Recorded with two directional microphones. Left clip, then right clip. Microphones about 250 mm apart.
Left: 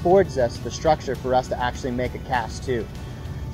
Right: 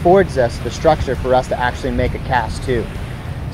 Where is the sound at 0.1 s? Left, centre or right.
Centre.